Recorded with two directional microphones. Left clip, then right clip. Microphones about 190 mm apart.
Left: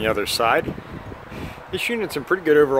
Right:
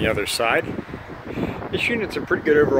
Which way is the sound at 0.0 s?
20° left (ahead or behind).